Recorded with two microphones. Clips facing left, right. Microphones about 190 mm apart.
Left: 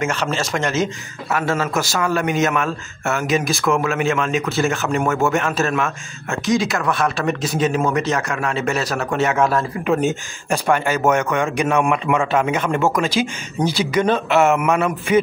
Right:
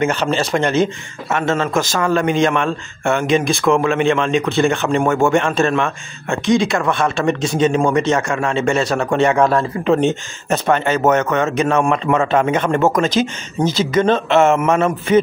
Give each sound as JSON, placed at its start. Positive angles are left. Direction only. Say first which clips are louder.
{"t": 0.3, "sound": "speech", "louder": "right 5 dB", "side_deg": -30}
{"t": 1.3, "sound": "speech", "louder": "right 3 dB", "side_deg": 5}
{"t": 14.5, "sound": "speech", "louder": "right 2 dB", "side_deg": -30}